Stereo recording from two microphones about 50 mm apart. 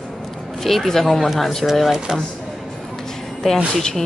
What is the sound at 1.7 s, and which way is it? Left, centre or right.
Speech, centre.